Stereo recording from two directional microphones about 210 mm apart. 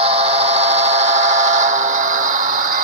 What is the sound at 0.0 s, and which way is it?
Train, 30° right (ahead or behind).